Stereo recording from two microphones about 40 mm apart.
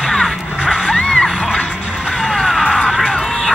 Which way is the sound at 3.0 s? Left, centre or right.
Left.